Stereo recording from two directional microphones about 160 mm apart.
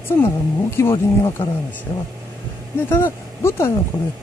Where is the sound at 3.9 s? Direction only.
35° left (ahead or behind).